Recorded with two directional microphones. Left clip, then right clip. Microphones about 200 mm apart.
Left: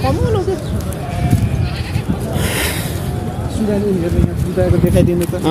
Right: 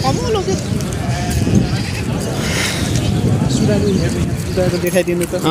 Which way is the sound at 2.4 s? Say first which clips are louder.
Even; 30° left (ahead or behind).